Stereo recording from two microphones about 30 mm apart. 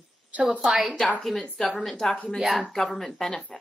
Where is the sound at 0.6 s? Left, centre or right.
Centre.